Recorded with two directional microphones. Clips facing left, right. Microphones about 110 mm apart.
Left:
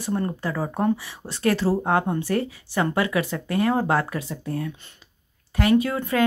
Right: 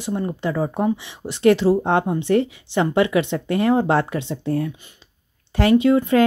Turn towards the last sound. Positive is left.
turn(degrees=-25)  # may be behind; listen again after turning